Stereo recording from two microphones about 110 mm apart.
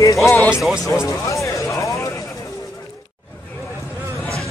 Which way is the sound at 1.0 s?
30° left (ahead or behind).